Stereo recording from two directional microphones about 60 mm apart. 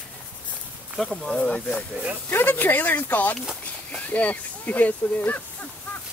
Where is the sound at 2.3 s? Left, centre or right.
Left.